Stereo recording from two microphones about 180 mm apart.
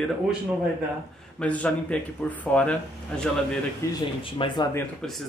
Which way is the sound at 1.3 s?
5° left (ahead or behind).